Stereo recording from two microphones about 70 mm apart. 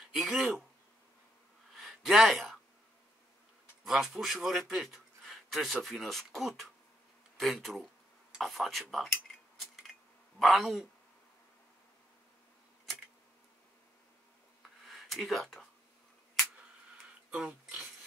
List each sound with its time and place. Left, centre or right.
0.1 s speech: centre
1.7 s a sound: centre
3.8 s a man's voice: centre
10.4 s speech: centre
14.6 s a sound: centre
17.3 s speech: centre